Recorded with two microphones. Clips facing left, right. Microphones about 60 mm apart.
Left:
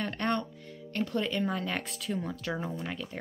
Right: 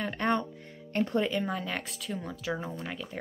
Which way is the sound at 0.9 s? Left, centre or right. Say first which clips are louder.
Right 3 dB; right.